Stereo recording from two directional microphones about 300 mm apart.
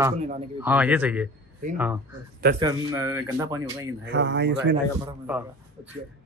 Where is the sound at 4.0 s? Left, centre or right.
Right.